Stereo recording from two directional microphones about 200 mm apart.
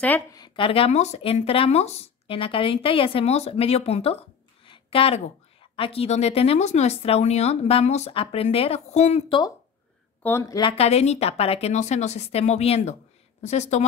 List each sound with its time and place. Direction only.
0.0 s a woman's voice: 10° left (ahead or behind)
0.4 s speech: 25° left (ahead or behind)
4.6 s a sound: 30° left (ahead or behind)
5.8 s speech: 30° left (ahead or behind)
10.2 s a woman's voice: 15° left (ahead or behind)
10.7 s speech: 30° left (ahead or behind)